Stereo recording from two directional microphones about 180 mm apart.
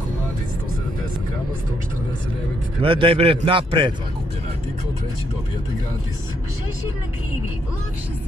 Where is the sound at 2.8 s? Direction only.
30° right (ahead or behind).